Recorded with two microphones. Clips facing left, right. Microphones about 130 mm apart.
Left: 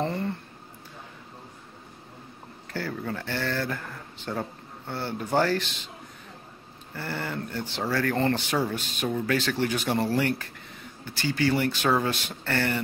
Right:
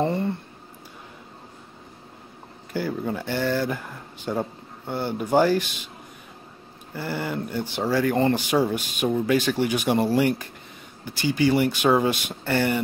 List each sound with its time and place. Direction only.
0.0 s speech: 15° right (ahead or behind)
2.7 s speech: 15° right (ahead or behind)
6.9 s speech: 15° right (ahead or behind)